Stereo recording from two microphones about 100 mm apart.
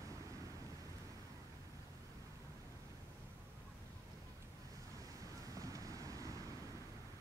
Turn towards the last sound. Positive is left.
turn(degrees=-35)  # may be behind; listen again after turning